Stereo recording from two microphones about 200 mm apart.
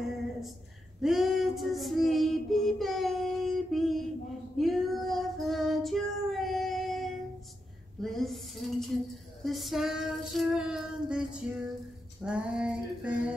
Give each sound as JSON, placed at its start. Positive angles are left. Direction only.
{"t": 1.0, "sound": "child singing", "side_deg": 0}
{"t": 8.0, "sound": "a sound", "side_deg": 0}
{"t": 12.2, "sound": "female singing", "side_deg": -5}